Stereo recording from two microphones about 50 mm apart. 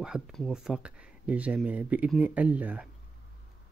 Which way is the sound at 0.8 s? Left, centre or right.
Right.